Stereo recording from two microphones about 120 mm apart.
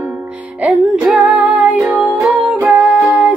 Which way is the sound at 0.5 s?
10° right (ahead or behind).